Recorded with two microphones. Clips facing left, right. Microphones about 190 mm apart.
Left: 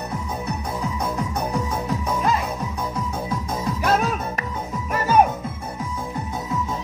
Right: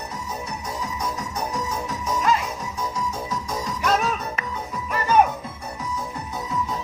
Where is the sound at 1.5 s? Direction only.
55° left (ahead or behind).